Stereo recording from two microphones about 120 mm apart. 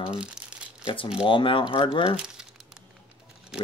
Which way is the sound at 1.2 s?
45° left (ahead or behind).